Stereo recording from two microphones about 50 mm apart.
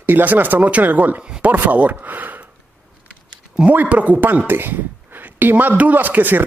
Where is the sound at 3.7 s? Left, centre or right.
Right.